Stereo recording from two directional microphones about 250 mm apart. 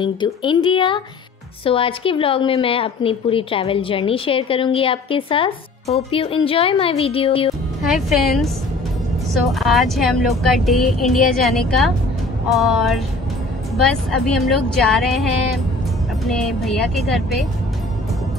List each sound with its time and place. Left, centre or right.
0.0 s a woman's voice: centre
7.8 s a woman's voice: centre